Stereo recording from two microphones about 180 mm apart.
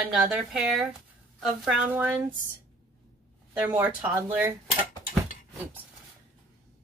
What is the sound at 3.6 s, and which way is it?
Speech, 5° right (ahead or behind).